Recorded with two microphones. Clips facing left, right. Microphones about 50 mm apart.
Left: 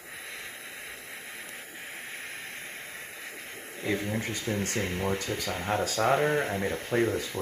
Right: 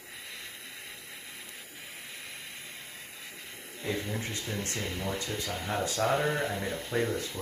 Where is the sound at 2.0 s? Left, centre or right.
Left.